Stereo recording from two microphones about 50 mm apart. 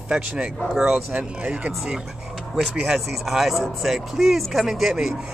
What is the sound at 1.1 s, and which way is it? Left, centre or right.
Speech, right.